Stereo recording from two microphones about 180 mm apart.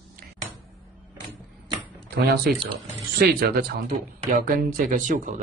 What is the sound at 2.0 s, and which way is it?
Speech, 60° right (ahead or behind).